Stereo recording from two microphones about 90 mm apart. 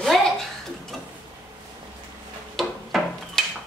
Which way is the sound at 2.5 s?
Centre (ahead or behind).